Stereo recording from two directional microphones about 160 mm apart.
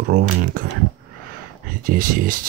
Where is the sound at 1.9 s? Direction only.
60° right (ahead or behind).